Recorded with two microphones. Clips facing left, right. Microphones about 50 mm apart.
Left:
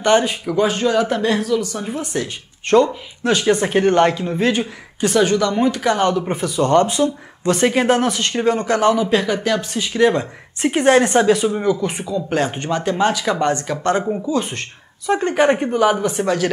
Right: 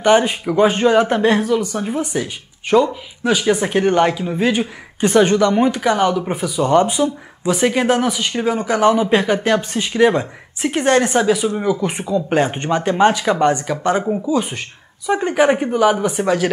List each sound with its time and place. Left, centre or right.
0.0 s a man's voice: centre
5.8 s a man's voice: centre
7.4 s speech: centre
8.9 s speech: right
10.6 s speech: centre
11.6 s a man's voice: centre
13.7 s a man's voice: centre